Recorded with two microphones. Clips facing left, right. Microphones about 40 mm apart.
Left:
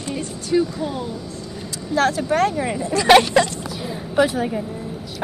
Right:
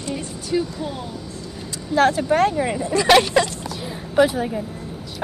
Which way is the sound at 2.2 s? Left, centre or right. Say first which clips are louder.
Right 1 dB; centre.